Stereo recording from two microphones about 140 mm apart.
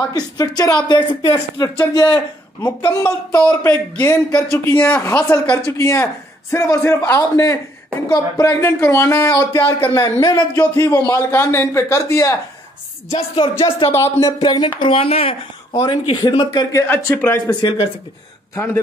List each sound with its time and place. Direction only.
0.0 s speech: 25° left (ahead or behind)
3.0 s a man's voice: 15° left (ahead or behind)
13.1 s speech: 40° left (ahead or behind)
13.8 s speech: 20° left (ahead or behind)
14.4 s speech: 35° left (ahead or behind)
16.8 s a man's voice: 15° left (ahead or behind)
17.6 s speech: 40° left (ahead or behind)